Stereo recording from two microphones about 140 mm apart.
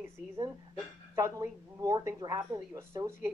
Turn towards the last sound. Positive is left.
turn(degrees=-15)  # may be behind; listen again after turning